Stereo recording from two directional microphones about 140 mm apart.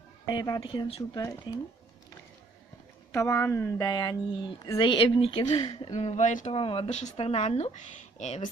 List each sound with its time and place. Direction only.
0.3 s speech: 30° left (ahead or behind)
3.1 s speech: 20° left (ahead or behind)
5.9 s speech: 55° left (ahead or behind)
6.5 s speech: 40° left (ahead or behind); by 8.5 s 60° left (ahead or behind)